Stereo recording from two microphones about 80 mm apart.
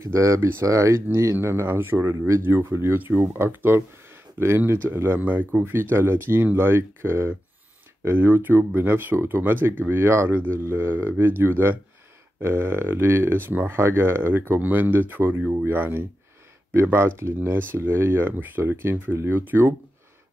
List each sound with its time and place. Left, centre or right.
0.0 s speech: right